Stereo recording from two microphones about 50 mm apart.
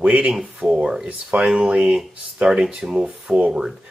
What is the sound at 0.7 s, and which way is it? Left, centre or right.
Speech, right.